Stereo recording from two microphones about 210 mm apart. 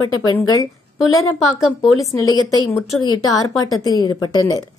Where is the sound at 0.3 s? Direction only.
15° left (ahead or behind).